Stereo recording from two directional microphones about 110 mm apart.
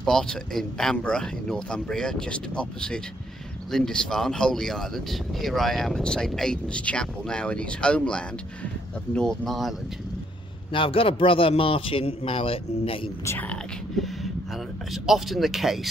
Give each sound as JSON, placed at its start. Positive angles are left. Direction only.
{"t": 0.0, "sound": "speech", "side_deg": 5}
{"t": 10.7, "sound": "a man's voice", "side_deg": 55}
{"t": 13.2, "sound": "speech", "side_deg": 25}
{"t": 15.0, "sound": "speech", "side_deg": 0}